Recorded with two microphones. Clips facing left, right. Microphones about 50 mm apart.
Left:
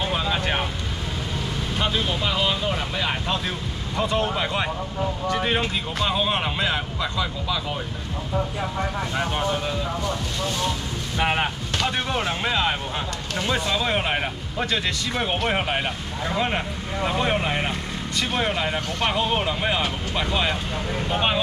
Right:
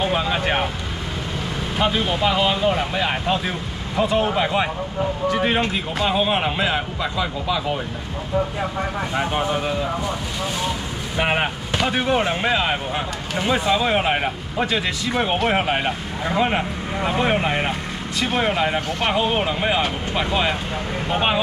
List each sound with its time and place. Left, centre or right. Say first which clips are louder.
0.0 s vehicle: right 4 dB; centre
1.8 s speech: right 5 dB; centre
9.1 s speech: right 4 dB; centre
11.1 s speech: right 2 dB; centre